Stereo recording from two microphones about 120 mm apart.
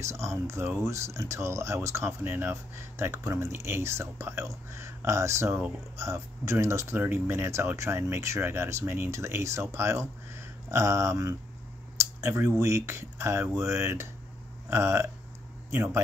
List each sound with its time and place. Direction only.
0.0 s speech: 25° right (ahead or behind)